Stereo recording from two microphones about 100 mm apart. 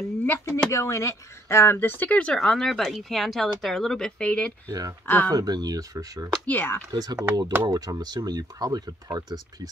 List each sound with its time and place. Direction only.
0.2 s speech: 25° left (ahead or behind)
4.6 s speech: 35° right (ahead or behind)
5.0 s speech: 20° left (ahead or behind)
5.3 s speech: 40° right (ahead or behind)
6.4 s speech: 20° left (ahead or behind)
6.9 s speech: 40° right (ahead or behind)